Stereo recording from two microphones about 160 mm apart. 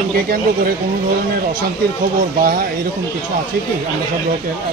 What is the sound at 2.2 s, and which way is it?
Speech, 65° right (ahead or behind).